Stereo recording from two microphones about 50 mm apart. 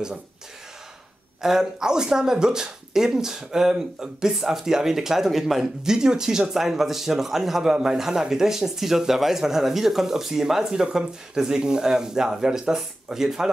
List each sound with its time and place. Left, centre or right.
1.4 s speech: centre